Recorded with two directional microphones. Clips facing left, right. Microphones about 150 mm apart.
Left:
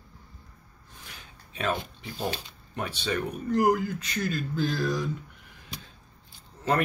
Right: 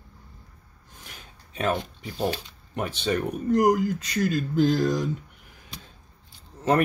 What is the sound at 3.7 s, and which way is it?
Speech, 40° right (ahead or behind).